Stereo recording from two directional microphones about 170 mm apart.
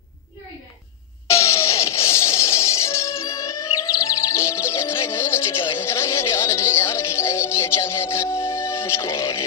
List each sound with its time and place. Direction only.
1.3 s music: 15° left (ahead or behind)